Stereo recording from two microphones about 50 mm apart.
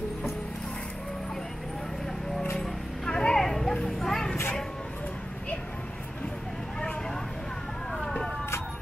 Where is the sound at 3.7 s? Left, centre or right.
Centre.